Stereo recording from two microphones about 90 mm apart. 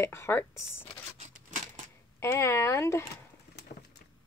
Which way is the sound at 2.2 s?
30° left (ahead or behind).